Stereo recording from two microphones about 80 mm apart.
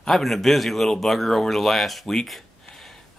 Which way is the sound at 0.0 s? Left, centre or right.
Centre.